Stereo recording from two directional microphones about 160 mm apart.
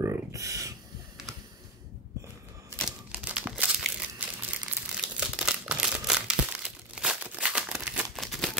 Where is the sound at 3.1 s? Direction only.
10° right (ahead or behind).